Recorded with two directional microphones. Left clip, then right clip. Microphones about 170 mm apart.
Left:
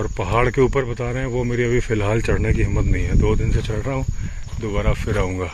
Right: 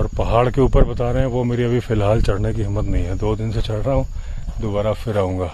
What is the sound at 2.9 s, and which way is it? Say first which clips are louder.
Speech: left 2 dB; 35° right (ahead or behind).